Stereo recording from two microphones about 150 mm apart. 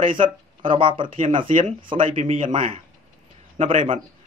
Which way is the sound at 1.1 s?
60° right (ahead or behind).